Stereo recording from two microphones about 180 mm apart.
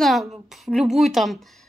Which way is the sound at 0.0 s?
Centre (ahead or behind).